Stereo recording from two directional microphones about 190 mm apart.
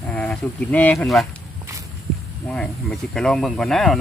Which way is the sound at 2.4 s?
5° left (ahead or behind).